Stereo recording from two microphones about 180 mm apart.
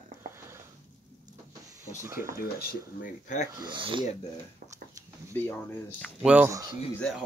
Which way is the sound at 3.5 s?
25° right (ahead or behind).